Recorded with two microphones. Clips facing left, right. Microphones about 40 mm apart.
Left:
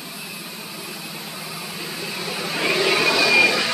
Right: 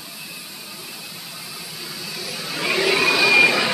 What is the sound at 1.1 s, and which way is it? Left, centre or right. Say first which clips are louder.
Vehicle: left 3 dB; left.